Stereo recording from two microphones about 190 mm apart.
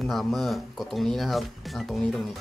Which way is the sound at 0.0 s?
5° left (ahead or behind).